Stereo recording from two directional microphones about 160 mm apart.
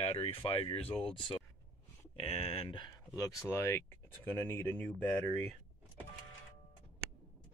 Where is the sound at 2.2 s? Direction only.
40° left (ahead or behind); by 5.2 s 10° left (ahead or behind).